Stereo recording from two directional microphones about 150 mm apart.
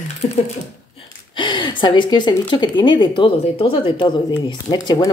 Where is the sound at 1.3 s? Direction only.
30° left (ahead or behind).